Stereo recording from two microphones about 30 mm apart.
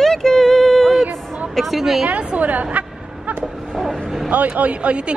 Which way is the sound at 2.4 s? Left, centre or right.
Right.